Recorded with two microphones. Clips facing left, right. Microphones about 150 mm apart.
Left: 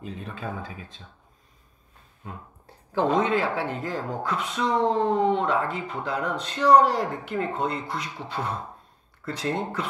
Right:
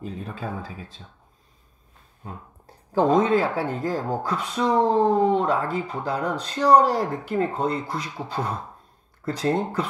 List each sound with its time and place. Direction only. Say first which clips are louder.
0.0 s speech: right 2 dB; 35° right (ahead or behind)
2.2 s speech: right 1 dB; 40° right (ahead or behind)